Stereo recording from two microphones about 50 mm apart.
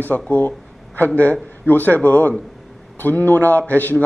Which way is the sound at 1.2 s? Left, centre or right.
Left.